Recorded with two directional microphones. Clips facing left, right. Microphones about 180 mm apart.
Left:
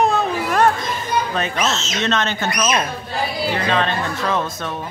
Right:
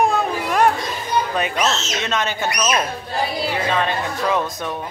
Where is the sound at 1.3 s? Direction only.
15° right (ahead or behind).